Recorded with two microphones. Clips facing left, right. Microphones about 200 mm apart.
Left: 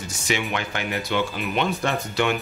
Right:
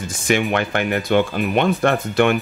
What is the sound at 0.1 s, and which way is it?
Speech, 55° right (ahead or behind).